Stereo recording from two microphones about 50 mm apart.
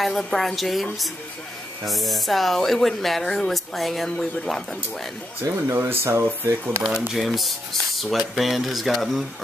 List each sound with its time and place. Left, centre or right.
0.0 s speech: centre
1.9 s speech: centre
5.4 s speech: right
7.2 s speech: centre